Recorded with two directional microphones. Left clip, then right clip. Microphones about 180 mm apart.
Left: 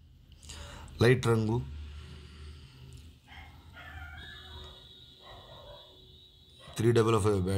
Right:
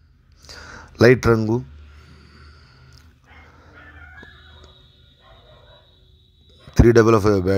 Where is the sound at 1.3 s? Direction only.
20° right (ahead or behind).